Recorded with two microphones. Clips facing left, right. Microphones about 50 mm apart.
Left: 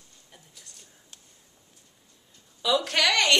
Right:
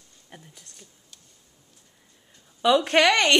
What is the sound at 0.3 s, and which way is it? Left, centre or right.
Speech, right.